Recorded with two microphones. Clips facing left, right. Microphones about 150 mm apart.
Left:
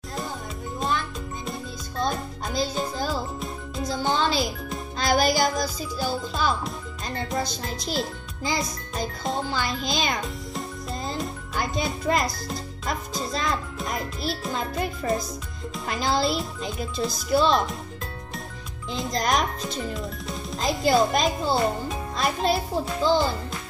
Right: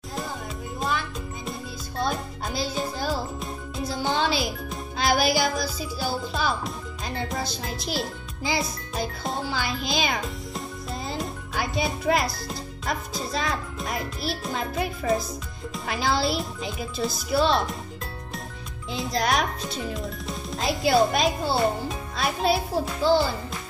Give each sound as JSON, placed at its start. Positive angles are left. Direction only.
{"t": 0.7, "sound": "music", "side_deg": 0}
{"t": 5.3, "sound": "music", "side_deg": 45}
{"t": 5.9, "sound": "a child's voice", "side_deg": 0}
{"t": 18.9, "sound": "speech", "side_deg": 0}